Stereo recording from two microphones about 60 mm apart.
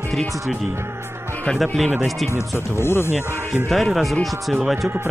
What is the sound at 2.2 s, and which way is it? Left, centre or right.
Speech, left.